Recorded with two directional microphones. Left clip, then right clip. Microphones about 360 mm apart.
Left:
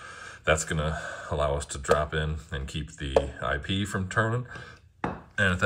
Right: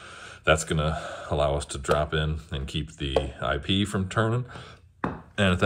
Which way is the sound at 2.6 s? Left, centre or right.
Centre.